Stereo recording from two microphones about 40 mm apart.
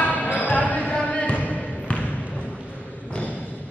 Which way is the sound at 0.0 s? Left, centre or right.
Left.